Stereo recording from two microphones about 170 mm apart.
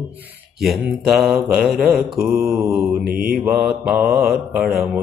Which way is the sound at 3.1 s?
60° right (ahead or behind).